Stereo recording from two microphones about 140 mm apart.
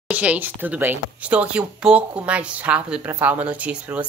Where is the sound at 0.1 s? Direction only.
10° right (ahead or behind).